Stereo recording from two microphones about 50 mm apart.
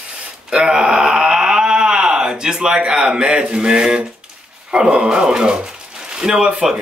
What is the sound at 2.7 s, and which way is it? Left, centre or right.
A man's voice, centre.